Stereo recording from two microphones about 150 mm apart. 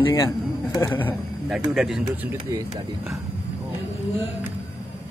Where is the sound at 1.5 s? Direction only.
5° right (ahead or behind).